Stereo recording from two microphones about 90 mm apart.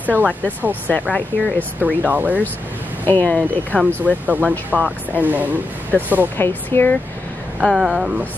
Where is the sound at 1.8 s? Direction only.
20° right (ahead or behind).